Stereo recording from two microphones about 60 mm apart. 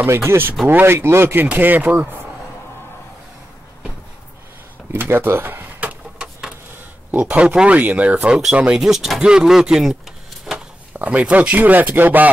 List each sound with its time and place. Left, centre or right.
0.0 s speech: right
4.9 s speech: right
6.1 s a sound: centre
7.1 s speech: right
8.7 s speech: centre
10.5 s a sound: centre
10.9 s speech: right